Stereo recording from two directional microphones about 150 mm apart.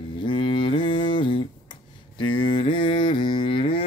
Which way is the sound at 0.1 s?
35° left (ahead or behind).